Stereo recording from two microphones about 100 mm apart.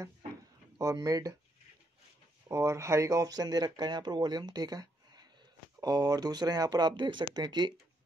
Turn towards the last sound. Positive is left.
turn(degrees=-45)  # may be behind; listen again after turning